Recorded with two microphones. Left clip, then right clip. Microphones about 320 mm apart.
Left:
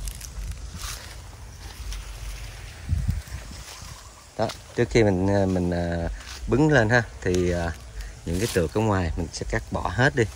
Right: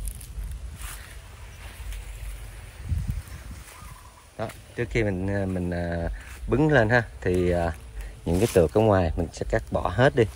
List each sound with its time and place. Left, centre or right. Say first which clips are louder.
4.4 s speech: left 6 dB; centre